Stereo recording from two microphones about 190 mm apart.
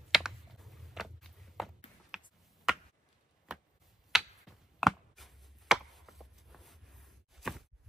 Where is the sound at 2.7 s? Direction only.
5° right (ahead or behind).